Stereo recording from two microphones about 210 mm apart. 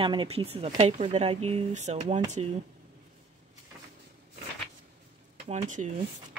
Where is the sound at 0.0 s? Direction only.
25° right (ahead or behind).